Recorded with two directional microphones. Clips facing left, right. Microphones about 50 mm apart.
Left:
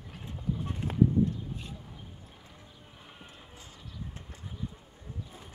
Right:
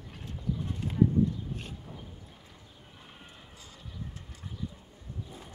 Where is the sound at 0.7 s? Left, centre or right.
Left.